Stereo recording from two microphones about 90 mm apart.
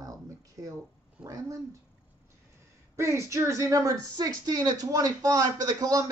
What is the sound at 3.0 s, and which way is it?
Speech, 35° right (ahead or behind).